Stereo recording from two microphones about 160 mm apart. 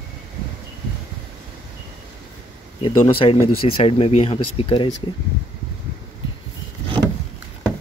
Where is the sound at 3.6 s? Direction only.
35° left (ahead or behind).